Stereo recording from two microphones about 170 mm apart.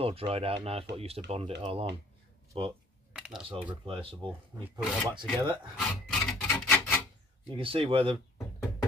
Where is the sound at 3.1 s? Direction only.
5° right (ahead or behind).